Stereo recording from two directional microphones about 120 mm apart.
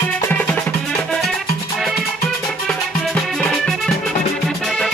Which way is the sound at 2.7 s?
5° left (ahead or behind).